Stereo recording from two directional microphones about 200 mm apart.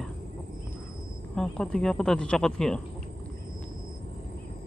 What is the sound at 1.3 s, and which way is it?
Speech, 5° left (ahead or behind).